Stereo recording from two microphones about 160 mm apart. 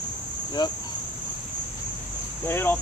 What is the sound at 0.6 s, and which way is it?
Speech, 25° left (ahead or behind).